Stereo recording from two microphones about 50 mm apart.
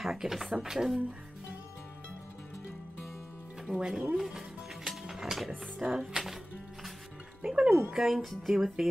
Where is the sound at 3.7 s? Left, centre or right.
Centre.